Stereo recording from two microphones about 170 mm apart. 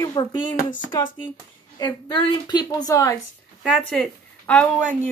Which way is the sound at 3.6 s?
Centre (ahead or behind).